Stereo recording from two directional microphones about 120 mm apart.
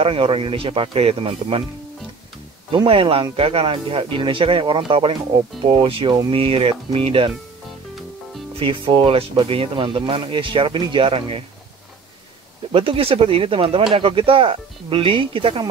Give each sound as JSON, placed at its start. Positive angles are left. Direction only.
{"t": 0.0, "sound": "speech", "side_deg": -50}
{"t": 2.7, "sound": "speech", "side_deg": -45}
{"t": 8.5, "sound": "speech", "side_deg": -45}
{"t": 12.7, "sound": "speech", "side_deg": -50}